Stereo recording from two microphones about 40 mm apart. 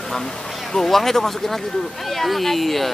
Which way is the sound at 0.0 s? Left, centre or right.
Centre.